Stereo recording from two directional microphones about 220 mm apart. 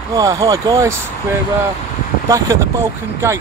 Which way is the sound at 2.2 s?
15° right (ahead or behind).